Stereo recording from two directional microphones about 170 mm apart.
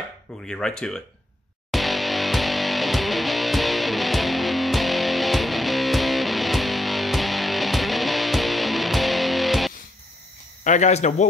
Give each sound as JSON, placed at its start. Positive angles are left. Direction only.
{"t": 0.5, "sound": "speech", "side_deg": 5}
{"t": 1.7, "sound": "music", "side_deg": 0}
{"t": 10.6, "sound": "speech", "side_deg": 45}